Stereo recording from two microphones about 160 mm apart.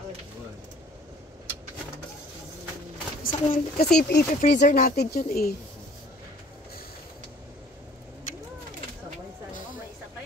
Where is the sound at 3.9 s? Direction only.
90° left.